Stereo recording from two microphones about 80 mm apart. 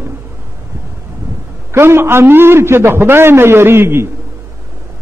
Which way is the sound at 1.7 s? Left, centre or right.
Right.